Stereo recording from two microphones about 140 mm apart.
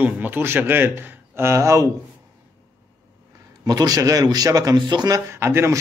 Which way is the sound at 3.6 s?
25° right (ahead or behind).